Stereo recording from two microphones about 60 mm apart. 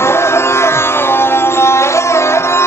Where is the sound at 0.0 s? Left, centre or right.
Left.